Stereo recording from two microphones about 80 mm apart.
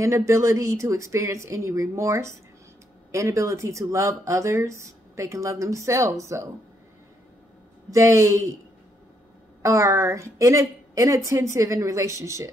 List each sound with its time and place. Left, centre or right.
0.0 s speech: right
7.9 s speech: right
9.6 s speech: right